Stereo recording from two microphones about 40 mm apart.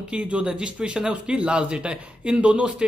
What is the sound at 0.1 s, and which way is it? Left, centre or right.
Speech, right.